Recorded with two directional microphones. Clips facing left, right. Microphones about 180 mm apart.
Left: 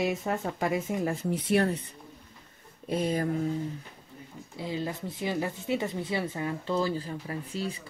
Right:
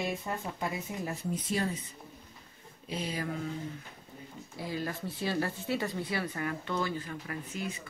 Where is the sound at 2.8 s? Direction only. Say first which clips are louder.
Left 8 dB; 50° left (ahead or behind).